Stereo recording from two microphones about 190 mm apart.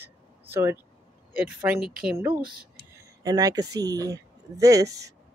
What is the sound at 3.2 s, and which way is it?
Speech, 20° right (ahead or behind).